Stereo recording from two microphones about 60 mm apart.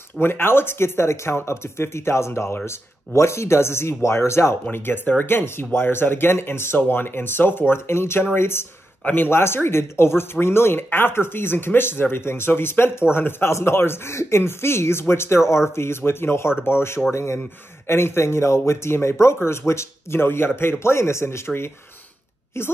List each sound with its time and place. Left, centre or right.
0.2 s speech: left
4.6 s speech: left
9.0 s speech: left